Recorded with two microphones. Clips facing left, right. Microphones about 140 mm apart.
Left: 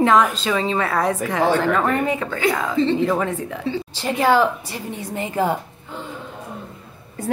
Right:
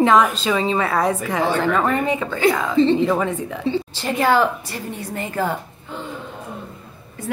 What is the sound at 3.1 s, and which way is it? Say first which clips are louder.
A woman's voice: right 1 dB; centre (ahead or behind).